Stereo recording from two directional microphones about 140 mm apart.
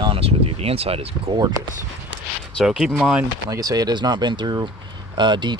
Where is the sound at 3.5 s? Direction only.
25° right (ahead or behind).